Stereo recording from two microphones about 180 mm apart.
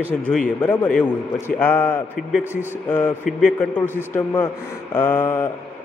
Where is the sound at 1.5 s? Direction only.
10° left (ahead or behind).